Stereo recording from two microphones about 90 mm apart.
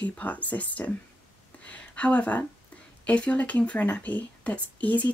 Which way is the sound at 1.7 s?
15° left (ahead or behind).